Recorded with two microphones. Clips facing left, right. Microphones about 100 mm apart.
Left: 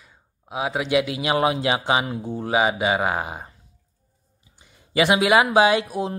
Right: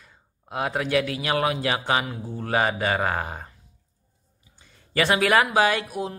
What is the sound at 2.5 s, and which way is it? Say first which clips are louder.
Speech: left 2 dB; 10° left (ahead or behind).